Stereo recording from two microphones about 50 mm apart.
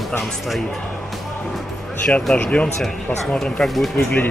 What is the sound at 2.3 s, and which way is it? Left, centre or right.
Speech, left.